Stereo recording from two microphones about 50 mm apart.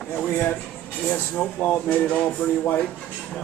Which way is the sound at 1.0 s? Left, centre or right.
Left.